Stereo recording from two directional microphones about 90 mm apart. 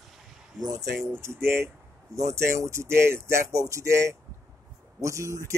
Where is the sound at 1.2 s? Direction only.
30° right (ahead or behind).